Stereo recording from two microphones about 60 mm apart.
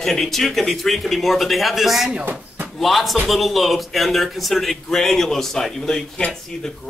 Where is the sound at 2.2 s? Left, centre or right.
Right.